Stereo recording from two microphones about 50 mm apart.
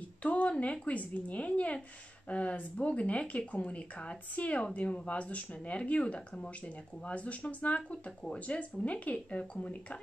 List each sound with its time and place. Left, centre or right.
0.2 s speech: left